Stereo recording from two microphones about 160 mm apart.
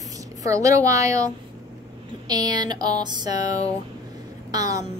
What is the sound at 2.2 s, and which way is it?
A woman's voice, 25° right (ahead or behind).